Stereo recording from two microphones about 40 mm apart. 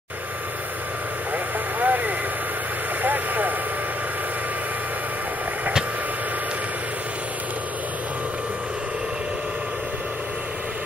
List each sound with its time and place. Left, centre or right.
1.3 s vehicle: right